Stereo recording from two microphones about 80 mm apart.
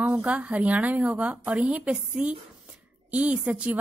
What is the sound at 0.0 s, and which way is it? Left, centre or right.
A woman's voice, centre.